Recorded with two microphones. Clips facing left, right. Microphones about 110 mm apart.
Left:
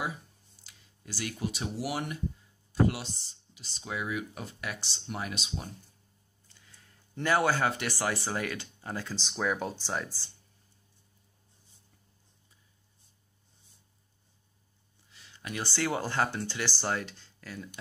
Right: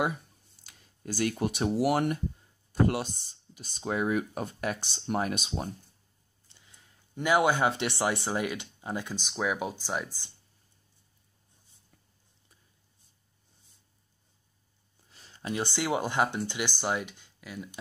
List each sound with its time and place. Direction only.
0.7 s speech: 50° right (ahead or behind)
6.4 s speech: 25° right (ahead or behind)
15.0 s a sound: 40° right (ahead or behind)
15.4 s speech: 25° right (ahead or behind)